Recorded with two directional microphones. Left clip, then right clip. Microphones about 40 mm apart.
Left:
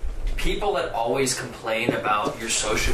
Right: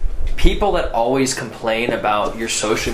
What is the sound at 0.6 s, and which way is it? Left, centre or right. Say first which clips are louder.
Speech: right 6 dB; right.